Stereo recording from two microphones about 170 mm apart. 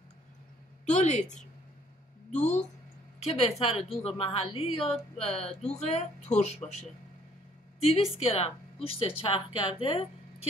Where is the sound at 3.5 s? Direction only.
35° left (ahead or behind).